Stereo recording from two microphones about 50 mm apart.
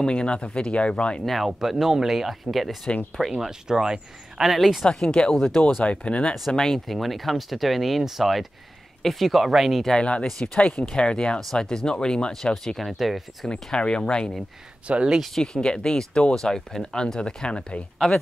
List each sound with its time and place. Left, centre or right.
0.0 s speech: centre
1.2 s speech: centre
5.0 s speech: centre
5.3 s speech: centre
5.8 s speech: left
6.5 s speech: centre
9.9 s speech: left; by 13.5 s centre
13.5 s speech: centre
14.9 s speech: right
15.3 s speech: centre